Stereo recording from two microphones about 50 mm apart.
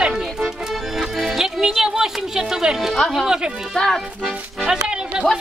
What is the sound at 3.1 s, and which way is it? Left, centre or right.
Speech, centre.